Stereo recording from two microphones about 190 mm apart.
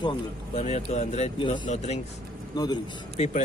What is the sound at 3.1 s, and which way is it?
Speech, 35° left (ahead or behind).